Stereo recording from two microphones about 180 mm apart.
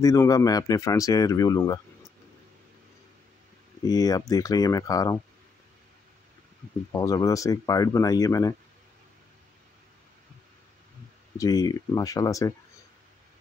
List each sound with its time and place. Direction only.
0.0 s speech: 20° left (ahead or behind)
3.8 s speech: 20° left (ahead or behind)
6.9 s speech: 20° left (ahead or behind)
11.3 s speech: 20° left (ahead or behind)